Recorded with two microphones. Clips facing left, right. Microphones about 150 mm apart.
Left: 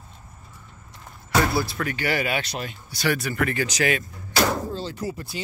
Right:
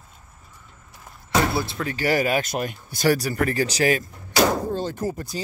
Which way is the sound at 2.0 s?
40° right (ahead or behind).